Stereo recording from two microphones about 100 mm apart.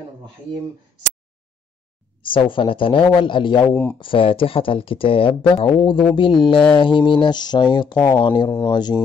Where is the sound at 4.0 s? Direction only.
60° left (ahead or behind).